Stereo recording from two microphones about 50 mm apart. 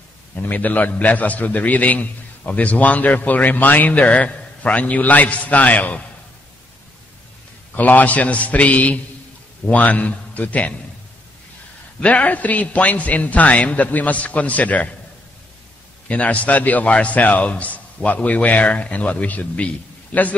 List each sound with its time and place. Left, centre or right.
0.4 s a man's voice: left
7.7 s a man's voice: left
12.0 s a man's voice: left
16.1 s a man's voice: left